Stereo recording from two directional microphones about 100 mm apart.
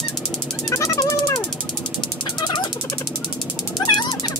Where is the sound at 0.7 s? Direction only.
30° left (ahead or behind).